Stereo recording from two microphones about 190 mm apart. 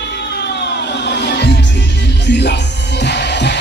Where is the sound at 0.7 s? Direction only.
65° left (ahead or behind).